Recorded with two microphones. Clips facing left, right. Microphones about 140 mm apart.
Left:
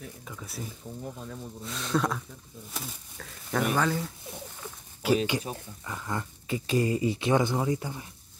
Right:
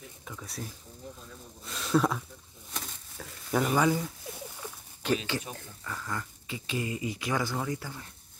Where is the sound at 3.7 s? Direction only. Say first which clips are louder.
Right 2 dB; 10° right (ahead or behind).